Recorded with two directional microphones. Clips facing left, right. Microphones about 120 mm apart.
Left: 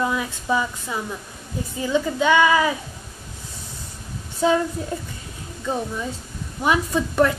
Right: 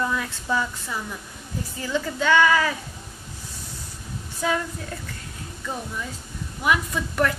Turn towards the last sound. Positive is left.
turn(degrees=25)  # may be behind; listen again after turning